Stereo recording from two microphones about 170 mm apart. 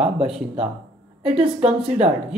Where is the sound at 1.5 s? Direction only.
5° right (ahead or behind).